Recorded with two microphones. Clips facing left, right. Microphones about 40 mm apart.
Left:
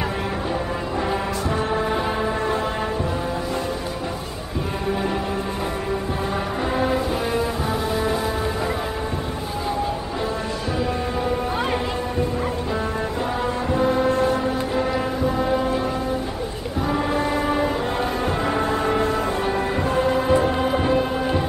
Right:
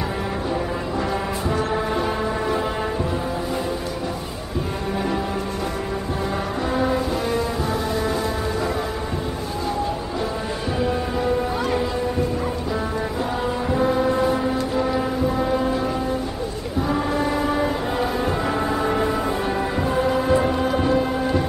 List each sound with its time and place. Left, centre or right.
1.7 s music: centre
13.7 s foghorn: centre
16.8 s a sound: centre
18.5 s music: centre